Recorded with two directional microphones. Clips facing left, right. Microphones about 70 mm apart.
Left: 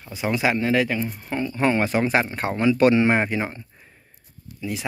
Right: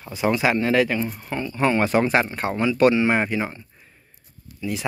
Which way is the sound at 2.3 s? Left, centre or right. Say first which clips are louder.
Left 1 dB; left.